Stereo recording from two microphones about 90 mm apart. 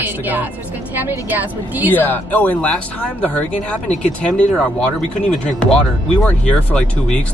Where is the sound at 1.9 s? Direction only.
20° left (ahead or behind).